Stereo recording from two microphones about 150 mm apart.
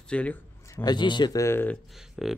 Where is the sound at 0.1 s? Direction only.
10° left (ahead or behind).